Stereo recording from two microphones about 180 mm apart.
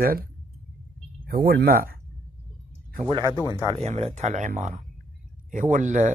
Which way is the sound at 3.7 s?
35° right (ahead or behind).